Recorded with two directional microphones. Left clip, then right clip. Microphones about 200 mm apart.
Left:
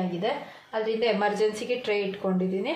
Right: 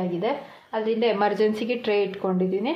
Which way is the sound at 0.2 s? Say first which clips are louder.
Right 2 dB; 45° right (ahead or behind).